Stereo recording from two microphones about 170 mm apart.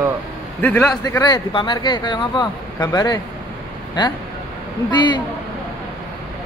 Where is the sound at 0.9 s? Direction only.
20° left (ahead or behind).